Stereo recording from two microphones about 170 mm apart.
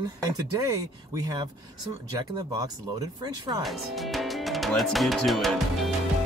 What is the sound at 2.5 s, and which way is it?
Speech, 25° right (ahead or behind).